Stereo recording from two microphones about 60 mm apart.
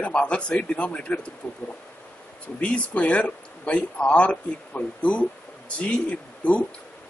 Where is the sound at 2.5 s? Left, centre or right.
Centre.